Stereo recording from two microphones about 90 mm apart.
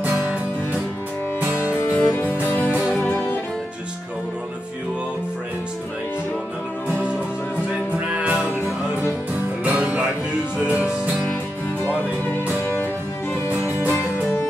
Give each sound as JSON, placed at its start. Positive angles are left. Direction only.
{"t": 0.0, "sound": "music", "side_deg": -20}
{"t": 1.6, "sound": "music", "side_deg": 25}
{"t": 8.1, "sound": "music", "side_deg": -15}
{"t": 9.7, "sound": "music", "side_deg": -15}
{"t": 12.0, "sound": "music", "side_deg": 25}